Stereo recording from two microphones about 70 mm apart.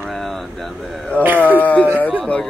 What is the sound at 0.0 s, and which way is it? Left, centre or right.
Vehicle, centre.